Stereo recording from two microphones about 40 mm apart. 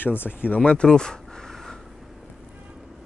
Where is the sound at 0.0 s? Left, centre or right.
Left.